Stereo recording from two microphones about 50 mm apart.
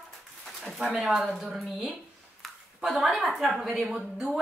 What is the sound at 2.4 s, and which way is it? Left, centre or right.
A woman's voice, centre.